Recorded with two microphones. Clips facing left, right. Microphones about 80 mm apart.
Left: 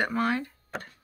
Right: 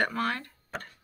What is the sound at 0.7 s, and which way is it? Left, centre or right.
Tick-tock, centre.